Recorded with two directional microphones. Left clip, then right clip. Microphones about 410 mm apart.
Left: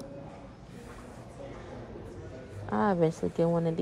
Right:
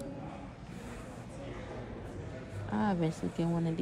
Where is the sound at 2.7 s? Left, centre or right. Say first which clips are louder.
Left 7 dB; centre.